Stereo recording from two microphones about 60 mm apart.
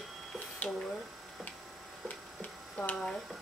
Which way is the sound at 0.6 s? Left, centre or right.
Centre.